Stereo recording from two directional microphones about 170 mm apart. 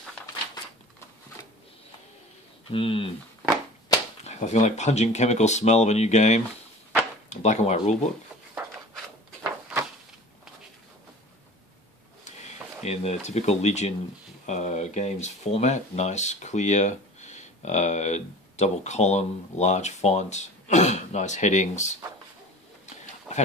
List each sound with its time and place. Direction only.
2.7 s speech: 35° left (ahead or behind)
4.2 s speech: 40° left (ahead or behind)
8.6 s a sound: 15° right (ahead or behind)
12.3 s speech: 40° left (ahead or behind)